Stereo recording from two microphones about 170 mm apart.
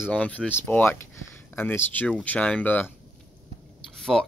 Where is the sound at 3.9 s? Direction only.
Centre (ahead or behind).